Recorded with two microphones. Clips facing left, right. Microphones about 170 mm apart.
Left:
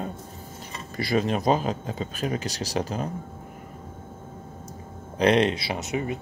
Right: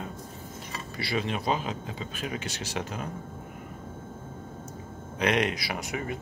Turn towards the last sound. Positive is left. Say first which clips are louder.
# left 4 dB
turn(degrees=20)  # may be behind; listen again after turning